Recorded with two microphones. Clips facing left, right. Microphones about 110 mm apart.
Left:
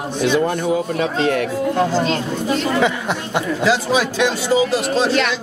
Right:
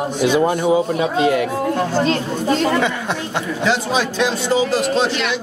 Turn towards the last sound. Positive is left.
turn(degrees=0)  # may be behind; listen again after turning